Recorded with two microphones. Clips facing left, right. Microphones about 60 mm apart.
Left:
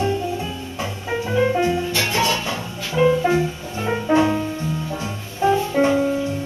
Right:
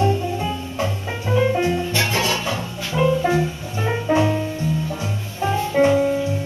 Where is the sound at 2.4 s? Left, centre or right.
Centre.